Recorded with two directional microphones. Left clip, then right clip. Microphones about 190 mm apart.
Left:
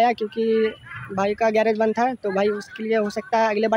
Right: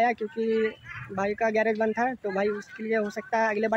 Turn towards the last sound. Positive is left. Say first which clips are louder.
# left 5 dB
turn(degrees=10)  # may be behind; listen again after turning